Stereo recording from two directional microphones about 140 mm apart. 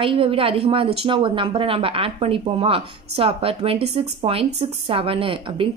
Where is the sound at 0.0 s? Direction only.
40° right (ahead or behind).